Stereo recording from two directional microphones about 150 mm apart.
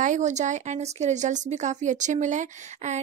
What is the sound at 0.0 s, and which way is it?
Speech, 55° right (ahead or behind).